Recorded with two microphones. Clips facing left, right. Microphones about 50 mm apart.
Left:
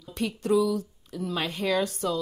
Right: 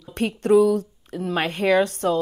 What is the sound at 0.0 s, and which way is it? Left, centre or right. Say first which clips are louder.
Speech: right 5 dB; right.